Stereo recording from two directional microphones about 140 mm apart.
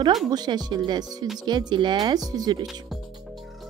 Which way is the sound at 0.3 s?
30° right (ahead or behind).